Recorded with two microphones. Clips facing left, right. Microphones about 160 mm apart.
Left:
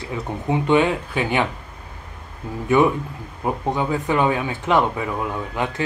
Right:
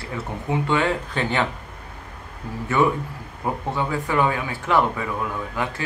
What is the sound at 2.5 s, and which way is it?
Speech, 20° left (ahead or behind).